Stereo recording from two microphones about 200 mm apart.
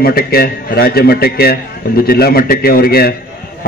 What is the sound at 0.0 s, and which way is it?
A man's voice, 50° left (ahead or behind).